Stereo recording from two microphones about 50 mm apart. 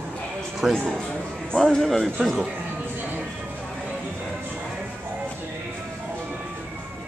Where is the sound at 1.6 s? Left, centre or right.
Centre.